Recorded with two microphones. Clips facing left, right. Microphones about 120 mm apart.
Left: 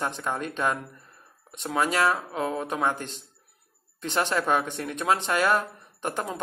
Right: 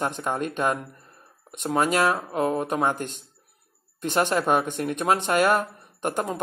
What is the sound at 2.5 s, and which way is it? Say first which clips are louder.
Speech: right 3 dB; 15° right (ahead or behind).